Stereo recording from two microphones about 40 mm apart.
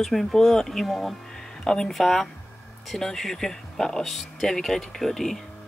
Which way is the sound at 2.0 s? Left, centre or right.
Centre.